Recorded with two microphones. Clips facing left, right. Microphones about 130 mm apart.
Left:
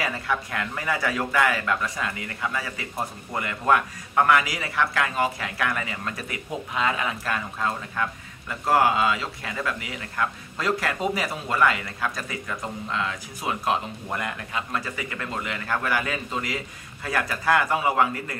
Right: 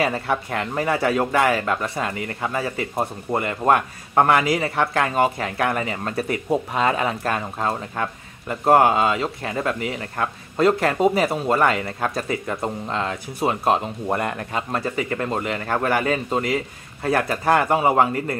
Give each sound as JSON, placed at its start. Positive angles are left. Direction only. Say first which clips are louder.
{"t": 0.0, "sound": "a man's voice", "louder": "right 5 dB", "side_deg": -30}
{"t": 16.3, "sound": "speech", "louder": "right 7 dB", "side_deg": -50}
{"t": 17.3, "sound": "a man's voice", "louder": "right 2 dB", "side_deg": -40}